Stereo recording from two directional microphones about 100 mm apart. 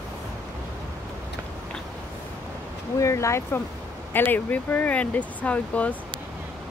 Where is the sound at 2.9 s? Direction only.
30° left (ahead or behind); by 5.9 s 15° left (ahead or behind).